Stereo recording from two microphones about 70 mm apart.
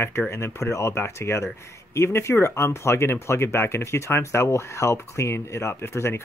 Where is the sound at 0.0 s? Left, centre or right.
Left.